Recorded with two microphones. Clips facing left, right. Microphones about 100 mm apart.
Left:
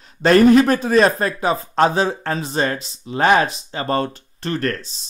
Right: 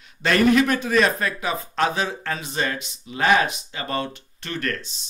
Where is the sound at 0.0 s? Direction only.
35° left (ahead or behind).